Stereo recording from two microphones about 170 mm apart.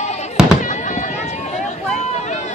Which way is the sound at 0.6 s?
45° left (ahead or behind).